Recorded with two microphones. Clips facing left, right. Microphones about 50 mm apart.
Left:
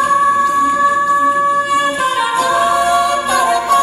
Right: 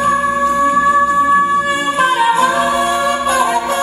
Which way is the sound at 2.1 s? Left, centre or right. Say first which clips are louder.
Right 1 dB; right.